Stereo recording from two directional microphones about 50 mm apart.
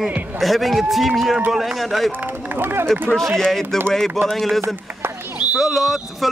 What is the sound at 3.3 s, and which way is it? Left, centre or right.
Speech, centre.